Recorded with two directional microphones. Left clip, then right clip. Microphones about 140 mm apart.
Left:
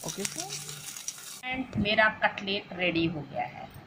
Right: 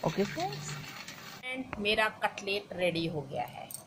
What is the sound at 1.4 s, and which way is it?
Speech, 45° right (ahead or behind).